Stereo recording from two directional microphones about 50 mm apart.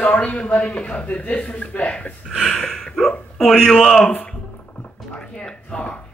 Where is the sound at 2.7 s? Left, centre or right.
Centre.